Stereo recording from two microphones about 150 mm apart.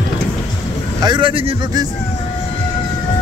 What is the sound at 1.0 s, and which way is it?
Vehicle, 30° right (ahead or behind).